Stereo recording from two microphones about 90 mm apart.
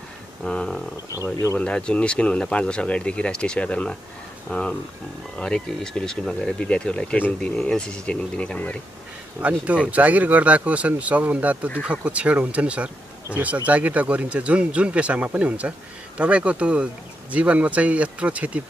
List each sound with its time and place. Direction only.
0.4 s speech: 10° left (ahead or behind)
1.1 s speech: 35° left (ahead or behind)
1.6 s speech: 10° left (ahead or behind)
9.4 s speech: 15° right (ahead or behind)